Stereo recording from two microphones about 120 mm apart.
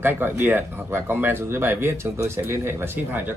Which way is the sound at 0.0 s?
20° right (ahead or behind).